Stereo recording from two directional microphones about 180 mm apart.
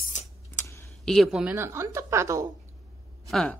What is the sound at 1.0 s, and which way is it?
A woman's voice, centre (ahead or behind).